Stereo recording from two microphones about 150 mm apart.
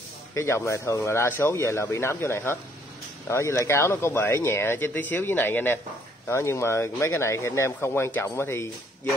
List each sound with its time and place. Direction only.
0.3 s speech: 20° left (ahead or behind)